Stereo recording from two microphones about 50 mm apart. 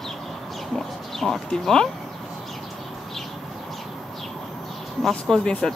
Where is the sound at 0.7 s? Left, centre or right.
Centre.